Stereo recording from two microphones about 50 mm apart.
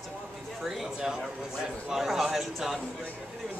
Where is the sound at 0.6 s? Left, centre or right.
Centre.